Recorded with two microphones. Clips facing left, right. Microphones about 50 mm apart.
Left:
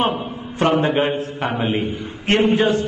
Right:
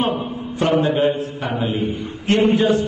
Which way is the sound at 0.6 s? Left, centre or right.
Left.